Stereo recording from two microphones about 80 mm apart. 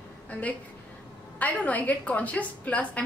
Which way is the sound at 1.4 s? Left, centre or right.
Centre.